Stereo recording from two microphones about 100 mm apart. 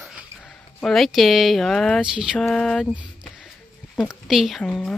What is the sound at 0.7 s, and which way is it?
Speech, 5° left (ahead or behind).